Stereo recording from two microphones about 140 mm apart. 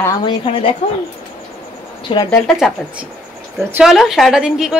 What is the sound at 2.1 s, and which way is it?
Speech, 40° left (ahead or behind).